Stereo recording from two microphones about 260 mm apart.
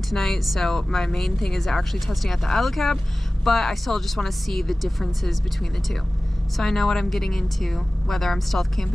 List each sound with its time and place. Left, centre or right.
0.1 s speech: centre
6.5 s speech: centre